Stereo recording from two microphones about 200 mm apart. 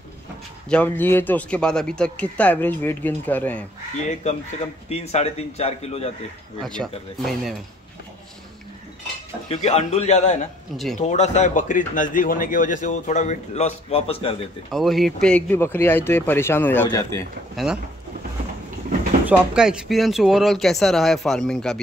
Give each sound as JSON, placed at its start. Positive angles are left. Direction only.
{"t": 0.7, "sound": "speech", "side_deg": 5}
{"t": 3.9, "sound": "speech", "side_deg": 35}
{"t": 6.6, "sound": "speech", "side_deg": 0}
{"t": 9.5, "sound": "speech", "side_deg": 30}
{"t": 14.7, "sound": "speech", "side_deg": 0}
{"t": 17.6, "sound": "speech", "side_deg": 0}
{"t": 19.2, "sound": "speech", "side_deg": -5}